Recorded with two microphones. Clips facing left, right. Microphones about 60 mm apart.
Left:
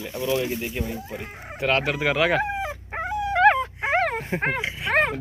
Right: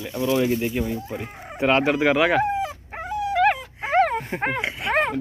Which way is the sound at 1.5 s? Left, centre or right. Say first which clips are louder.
Right 4 dB; centre.